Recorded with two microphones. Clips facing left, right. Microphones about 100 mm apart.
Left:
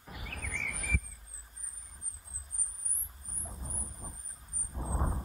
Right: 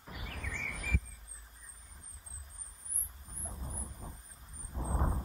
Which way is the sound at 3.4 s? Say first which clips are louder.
Even; 5° right (ahead or behind).